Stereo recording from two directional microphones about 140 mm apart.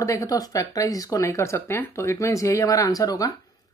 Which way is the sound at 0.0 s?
25° left (ahead or behind).